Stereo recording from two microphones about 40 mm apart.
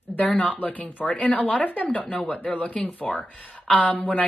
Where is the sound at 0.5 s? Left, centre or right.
Left.